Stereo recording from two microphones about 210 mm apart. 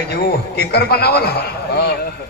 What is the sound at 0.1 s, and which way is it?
A man's voice, 50° left (ahead or behind).